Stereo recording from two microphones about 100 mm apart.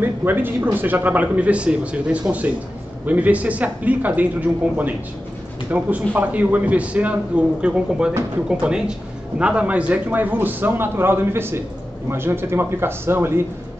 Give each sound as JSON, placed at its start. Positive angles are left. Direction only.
{"t": 0.0, "sound": "a man's voice", "side_deg": -20}